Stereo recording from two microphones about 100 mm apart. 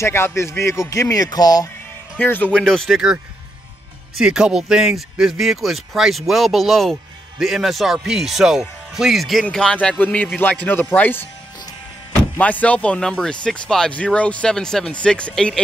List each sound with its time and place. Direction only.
0.0 s speech: 25° left (ahead or behind); by 1.7 s 40° left (ahead or behind)
2.1 s speech: 15° left (ahead or behind)
4.1 s speech: 5° right (ahead or behind); by 11.2 s 20° left (ahead or behind)
12.4 s speech: 15° left (ahead or behind)